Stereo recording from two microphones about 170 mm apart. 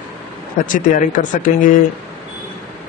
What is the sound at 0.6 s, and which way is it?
Speech, 50° left (ahead or behind).